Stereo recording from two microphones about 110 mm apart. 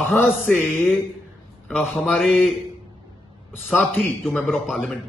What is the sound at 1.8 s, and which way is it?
Speech, centre (ahead or behind).